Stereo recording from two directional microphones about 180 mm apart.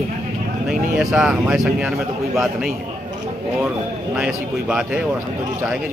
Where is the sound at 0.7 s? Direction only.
Centre (ahead or behind).